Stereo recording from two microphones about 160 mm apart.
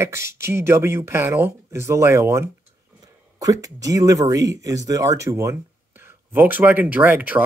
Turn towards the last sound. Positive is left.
turn(degrees=-10)  # may be behind; listen again after turning